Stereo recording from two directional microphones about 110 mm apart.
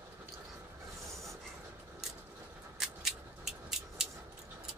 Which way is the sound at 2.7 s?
5° right (ahead or behind).